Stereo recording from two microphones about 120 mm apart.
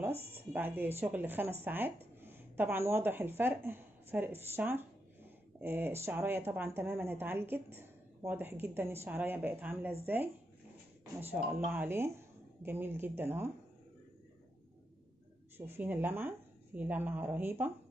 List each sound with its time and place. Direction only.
0.3 s a woman's voice: 15° right (ahead or behind)
15.5 s speech: 20° right (ahead or behind)